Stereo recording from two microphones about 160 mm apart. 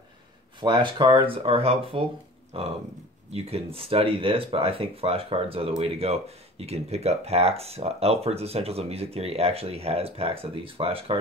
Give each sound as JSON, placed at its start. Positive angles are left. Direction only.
{"t": 0.6, "sound": "speech", "side_deg": -30}